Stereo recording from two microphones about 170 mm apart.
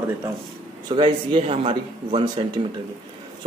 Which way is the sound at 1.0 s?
30° right (ahead or behind).